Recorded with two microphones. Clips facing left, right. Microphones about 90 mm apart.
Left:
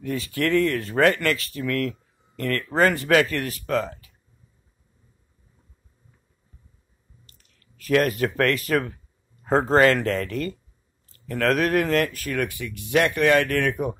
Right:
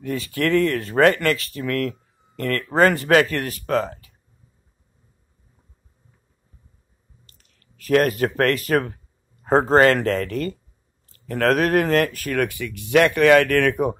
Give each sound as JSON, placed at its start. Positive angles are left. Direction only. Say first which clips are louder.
{"t": 0.0, "sound": "speech", "louder": "right 2 dB", "side_deg": -55}
{"t": 7.7, "sound": "speech", "louder": "right 3 dB", "side_deg": -50}